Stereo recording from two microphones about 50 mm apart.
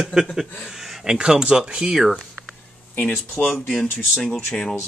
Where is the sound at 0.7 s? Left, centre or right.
Centre.